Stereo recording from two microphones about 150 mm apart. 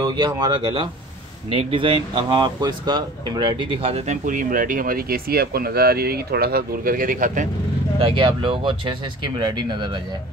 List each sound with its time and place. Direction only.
0.0 s speech: 30° right (ahead or behind); by 7.4 s 60° right (ahead or behind)
8.0 s speech: 35° right (ahead or behind)